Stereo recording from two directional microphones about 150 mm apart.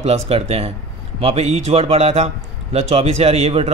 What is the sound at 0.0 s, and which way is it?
A man's voice, 45° right (ahead or behind).